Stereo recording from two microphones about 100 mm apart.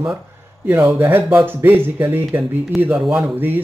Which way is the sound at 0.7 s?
20° right (ahead or behind).